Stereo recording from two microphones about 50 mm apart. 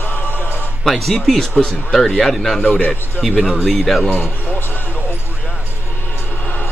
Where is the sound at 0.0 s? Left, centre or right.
Left.